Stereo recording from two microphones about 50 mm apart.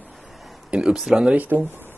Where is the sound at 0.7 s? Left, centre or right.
Centre.